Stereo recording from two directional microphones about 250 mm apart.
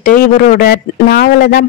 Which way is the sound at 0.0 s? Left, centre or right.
Left.